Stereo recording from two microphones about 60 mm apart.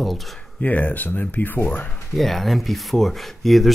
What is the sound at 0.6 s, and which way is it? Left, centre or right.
Speech, left.